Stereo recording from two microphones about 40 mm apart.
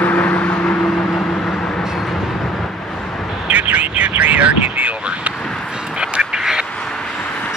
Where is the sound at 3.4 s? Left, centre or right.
Right.